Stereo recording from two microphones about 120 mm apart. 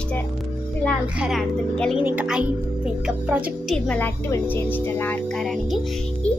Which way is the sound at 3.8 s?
15° left (ahead or behind).